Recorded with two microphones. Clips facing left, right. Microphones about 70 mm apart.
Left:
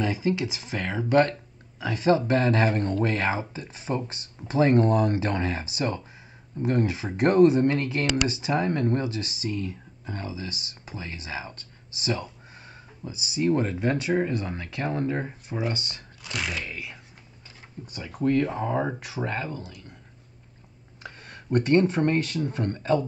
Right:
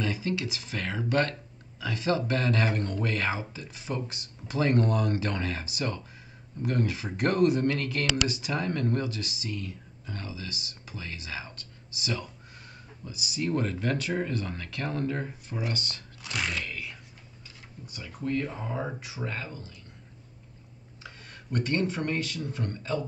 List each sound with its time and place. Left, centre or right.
0.0 s speech: centre
16.2 s speech: centre
16.6 s a sound: left
17.8 s speech: left
19.2 s speech: left
21.0 s speech: left